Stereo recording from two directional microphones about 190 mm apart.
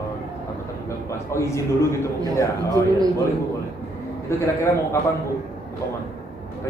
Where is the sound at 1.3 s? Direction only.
15° left (ahead or behind).